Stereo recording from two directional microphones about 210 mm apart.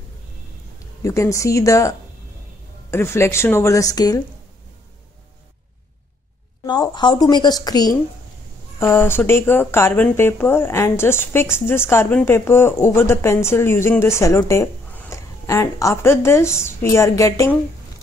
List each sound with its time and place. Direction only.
1.0 s speech: 15° left (ahead or behind)
6.6 s a woman's voice: 20° left (ahead or behind)